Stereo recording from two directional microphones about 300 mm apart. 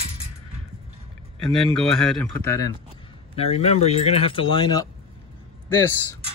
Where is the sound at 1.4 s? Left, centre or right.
Centre.